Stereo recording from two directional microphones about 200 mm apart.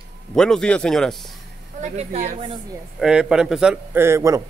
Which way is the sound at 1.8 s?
35° right (ahead or behind).